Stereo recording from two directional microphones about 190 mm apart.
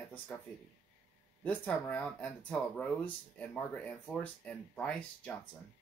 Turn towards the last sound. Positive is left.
turn(degrees=5)  # may be behind; listen again after turning